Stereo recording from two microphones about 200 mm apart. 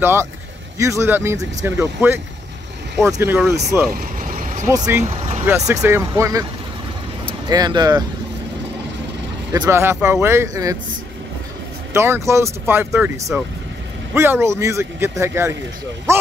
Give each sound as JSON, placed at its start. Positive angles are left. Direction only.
{"t": 0.0, "sound": "speech", "side_deg": -10}
{"t": 4.3, "sound": "vehicle", "side_deg": -40}
{"t": 4.6, "sound": "speech", "side_deg": -15}
{"t": 7.4, "sound": "speech", "side_deg": -20}
{"t": 9.5, "sound": "speech", "side_deg": -15}
{"t": 11.9, "sound": "speech", "side_deg": -15}